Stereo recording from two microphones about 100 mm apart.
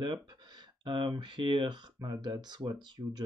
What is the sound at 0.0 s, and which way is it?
Speech, 55° right (ahead or behind).